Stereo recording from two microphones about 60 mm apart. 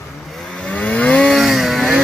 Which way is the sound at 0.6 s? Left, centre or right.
Left.